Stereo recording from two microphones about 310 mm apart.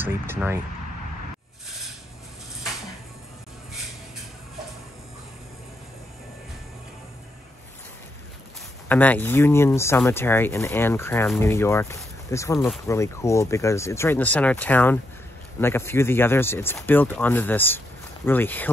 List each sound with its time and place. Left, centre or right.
0.0 s speech: centre
8.8 s speech: centre